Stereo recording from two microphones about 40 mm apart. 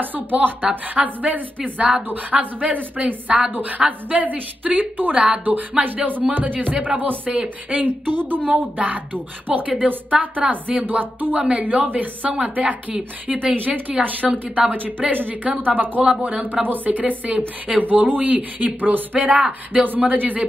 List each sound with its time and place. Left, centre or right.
0.0 s a woman's voice: right
5.1 s speech: right
5.4 s speech: right
8.1 s a woman's voice: right
8.5 s a woman's voice: right
10.1 s a woman's voice: centre
10.5 s speech: right
11.3 s a woman's voice: right
14.2 s a woman's voice: centre
14.7 s speech: right
16.0 s a woman's voice: right
16.6 s speech: right
19.1 s a woman's voice: right